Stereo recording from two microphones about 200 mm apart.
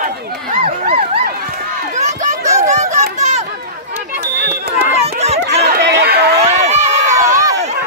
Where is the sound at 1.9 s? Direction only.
35° right (ahead or behind).